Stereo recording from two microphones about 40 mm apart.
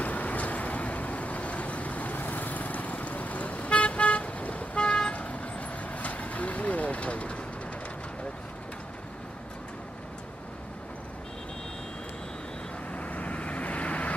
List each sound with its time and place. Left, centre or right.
0.0 s vehicle: left
12.9 s vehicle: left